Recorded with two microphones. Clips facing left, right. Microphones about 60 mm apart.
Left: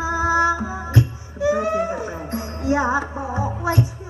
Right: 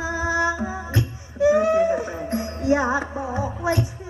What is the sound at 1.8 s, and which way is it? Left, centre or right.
Music, left.